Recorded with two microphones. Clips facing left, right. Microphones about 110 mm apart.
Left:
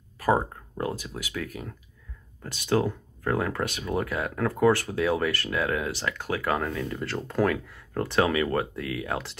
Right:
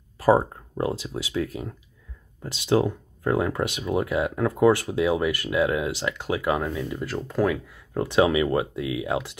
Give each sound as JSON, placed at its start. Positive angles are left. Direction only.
{"t": 0.2, "sound": "speech", "side_deg": -30}